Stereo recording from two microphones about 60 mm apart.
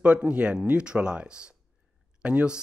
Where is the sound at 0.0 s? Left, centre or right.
Right.